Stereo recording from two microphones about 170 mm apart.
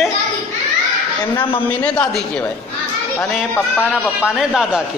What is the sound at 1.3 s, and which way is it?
Speech, 30° left (ahead or behind).